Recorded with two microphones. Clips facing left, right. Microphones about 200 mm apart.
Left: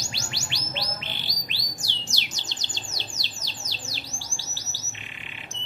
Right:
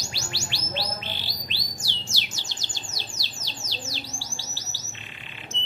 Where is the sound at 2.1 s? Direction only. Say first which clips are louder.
Even; 20° left (ahead or behind).